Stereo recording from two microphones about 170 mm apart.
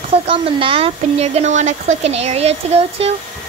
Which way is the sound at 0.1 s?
30° right (ahead or behind).